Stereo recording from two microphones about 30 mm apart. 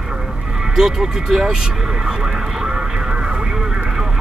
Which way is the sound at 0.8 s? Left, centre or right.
Centre.